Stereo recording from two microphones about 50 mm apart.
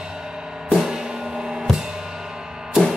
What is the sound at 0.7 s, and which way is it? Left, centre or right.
Music, centre.